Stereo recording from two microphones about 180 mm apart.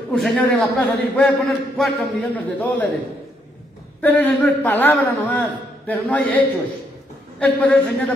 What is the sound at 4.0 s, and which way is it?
A man's voice, 10° left (ahead or behind).